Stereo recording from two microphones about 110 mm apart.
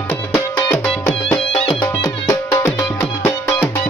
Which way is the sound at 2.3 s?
30° left (ahead or behind).